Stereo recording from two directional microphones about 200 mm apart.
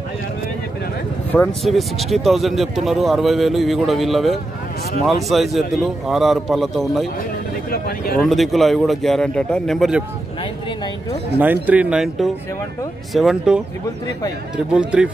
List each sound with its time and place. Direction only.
1.3 s speech: 5° left (ahead or behind)
7.7 s speech: 50° left (ahead or behind)
8.2 s speech: centre (ahead or behind)
11.3 s speech: 10° right (ahead or behind)
14.7 s speech: 5° right (ahead or behind)